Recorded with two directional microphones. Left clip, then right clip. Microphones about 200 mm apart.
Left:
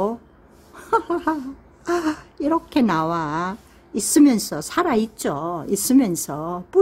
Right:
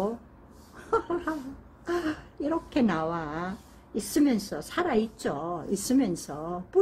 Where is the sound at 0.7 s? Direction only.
25° left (ahead or behind).